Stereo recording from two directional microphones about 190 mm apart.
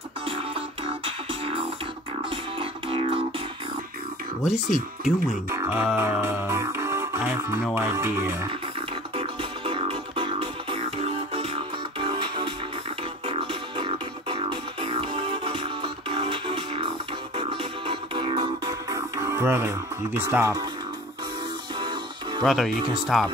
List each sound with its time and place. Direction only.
0.4 s music: 30° right (ahead or behind)
4.6 s speech: 40° left (ahead or behind)
5.5 s speech: 15° right (ahead or behind)
5.9 s music: 10° right (ahead or behind)
7.7 s speech: 15° right (ahead or behind)
9.1 s music: 30° right (ahead or behind)
21.7 s music: 25° right (ahead or behind)
22.4 s speech: centre (ahead or behind)